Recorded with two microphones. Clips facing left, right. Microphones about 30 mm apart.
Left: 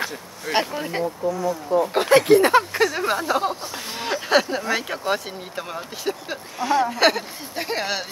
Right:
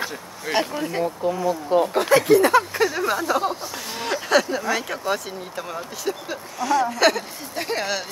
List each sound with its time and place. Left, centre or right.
0.5 s speech: left
1.0 s speech: right
2.0 s speech: left
2.7 s speech: centre
4.3 s speech: left